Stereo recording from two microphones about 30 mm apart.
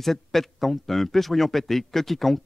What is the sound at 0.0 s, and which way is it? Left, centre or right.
Speech, centre.